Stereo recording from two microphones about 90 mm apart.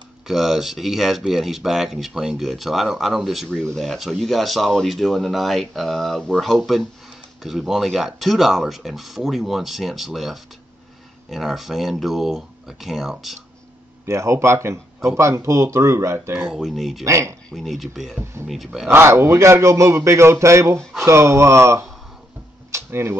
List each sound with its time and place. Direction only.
0.3 s speech: 5° right (ahead or behind)
3.4 s speech: 10° left (ahead or behind)
14.0 s a man's voice: 30° right (ahead or behind)
16.3 s speech: 10° right (ahead or behind)
17.0 s a man's voice: 35° right (ahead or behind)
17.6 s speech: centre (ahead or behind)
18.9 s a man's voice: 30° right (ahead or behind)
22.7 s a sound: 30° right (ahead or behind)